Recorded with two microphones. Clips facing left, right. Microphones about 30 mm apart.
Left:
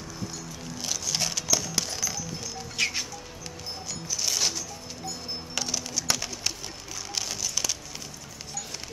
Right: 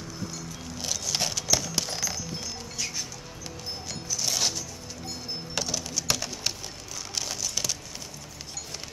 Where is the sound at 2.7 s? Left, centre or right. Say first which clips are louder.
Left 8 dB; left.